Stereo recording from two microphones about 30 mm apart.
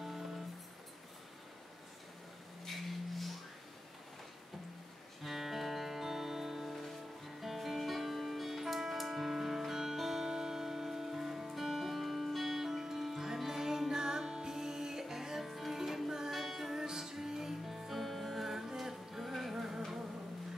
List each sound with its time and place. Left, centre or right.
2.7 s a sound: centre
5.2 s music: centre
15.4 s music: centre
16.7 s music: centre
18.0 s music: centre